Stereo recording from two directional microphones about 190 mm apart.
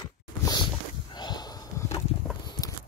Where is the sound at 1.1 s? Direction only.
20° left (ahead or behind).